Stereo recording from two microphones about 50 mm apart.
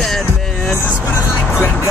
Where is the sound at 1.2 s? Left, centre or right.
Left.